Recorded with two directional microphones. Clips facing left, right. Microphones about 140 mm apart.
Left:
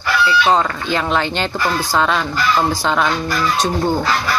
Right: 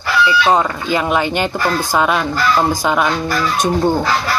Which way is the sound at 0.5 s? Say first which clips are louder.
Right 1 dB; 10° right (ahead or behind).